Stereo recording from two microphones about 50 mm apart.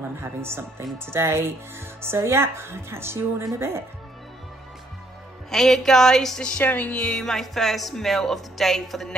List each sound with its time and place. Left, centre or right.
0.2 s speech: right
5.5 s speech: centre
6.6 s speech: left
7.2 s speech: centre